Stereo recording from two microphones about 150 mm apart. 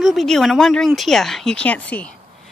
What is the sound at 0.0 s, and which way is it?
Speech, centre (ahead or behind).